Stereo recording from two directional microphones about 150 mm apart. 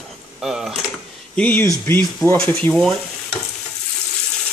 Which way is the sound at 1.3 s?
10° left (ahead or behind).